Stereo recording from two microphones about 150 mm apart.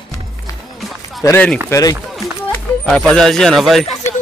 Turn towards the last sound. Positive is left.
turn(degrees=0)  # may be behind; listen again after turning